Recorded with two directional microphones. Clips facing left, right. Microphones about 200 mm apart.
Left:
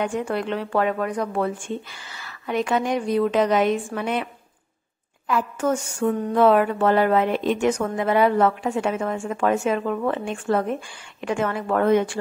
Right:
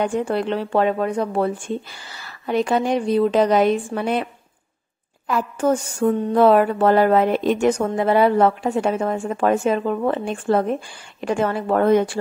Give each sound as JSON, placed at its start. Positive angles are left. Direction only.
{"t": 0.0, "sound": "a woman's voice", "side_deg": -35}